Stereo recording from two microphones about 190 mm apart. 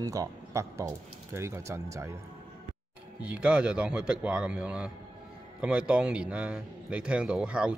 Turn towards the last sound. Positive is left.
turn(degrees=-5)  # may be behind; listen again after turning